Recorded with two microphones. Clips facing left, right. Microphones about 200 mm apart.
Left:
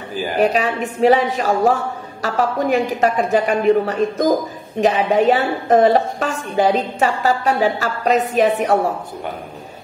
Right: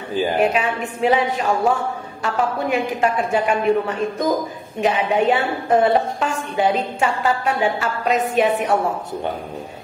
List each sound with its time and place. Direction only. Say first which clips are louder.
0.4 s a woman's voice: left 7 dB; 35° left (ahead or behind)